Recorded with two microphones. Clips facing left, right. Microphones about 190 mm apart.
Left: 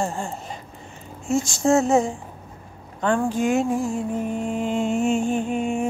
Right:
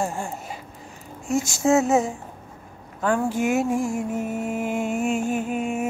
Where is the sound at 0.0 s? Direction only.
5° right (ahead or behind).